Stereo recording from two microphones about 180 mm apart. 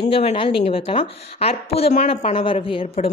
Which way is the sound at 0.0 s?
35° left (ahead or behind).